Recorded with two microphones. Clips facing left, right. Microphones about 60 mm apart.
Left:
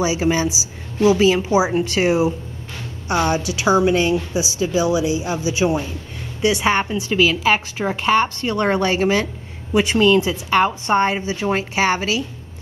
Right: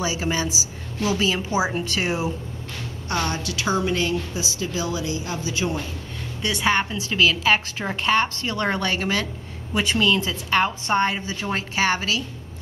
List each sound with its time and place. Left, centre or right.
0.0 s a woman's voice: centre
10.2 s a woman's voice: centre